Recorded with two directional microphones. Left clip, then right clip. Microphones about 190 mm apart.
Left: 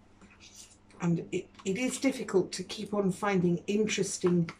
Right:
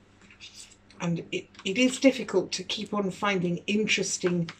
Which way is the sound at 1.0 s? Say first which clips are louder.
Right 1 dB; centre (ahead or behind).